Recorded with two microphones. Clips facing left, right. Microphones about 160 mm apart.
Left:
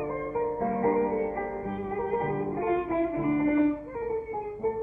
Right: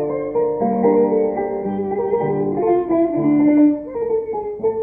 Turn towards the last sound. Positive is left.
turn(degrees=-40)  # may be behind; listen again after turning